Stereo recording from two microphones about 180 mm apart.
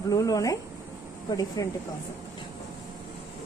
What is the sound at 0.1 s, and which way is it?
Speech, 20° left (ahead or behind).